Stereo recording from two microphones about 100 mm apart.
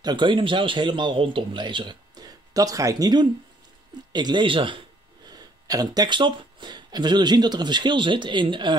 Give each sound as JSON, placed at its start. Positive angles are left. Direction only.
{"t": 0.0, "sound": "speech", "side_deg": -50}